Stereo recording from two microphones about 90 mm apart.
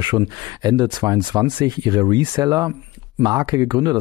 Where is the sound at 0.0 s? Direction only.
50° right (ahead or behind).